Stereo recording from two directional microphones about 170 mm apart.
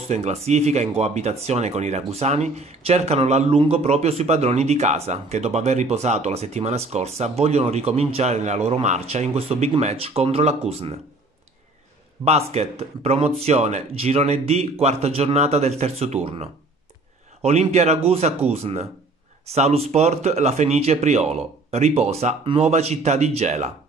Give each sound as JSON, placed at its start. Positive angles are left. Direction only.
{"t": 0.1, "sound": "speech", "side_deg": -40}
{"t": 12.3, "sound": "speech", "side_deg": -40}